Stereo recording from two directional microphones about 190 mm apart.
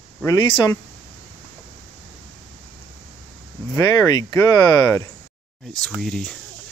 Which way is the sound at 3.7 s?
20° left (ahead or behind).